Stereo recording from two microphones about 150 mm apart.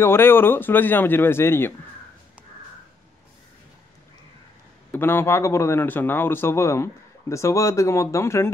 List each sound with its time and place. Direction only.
0.0 s speech: 15° left (ahead or behind)
4.9 s speech: 15° left (ahead or behind)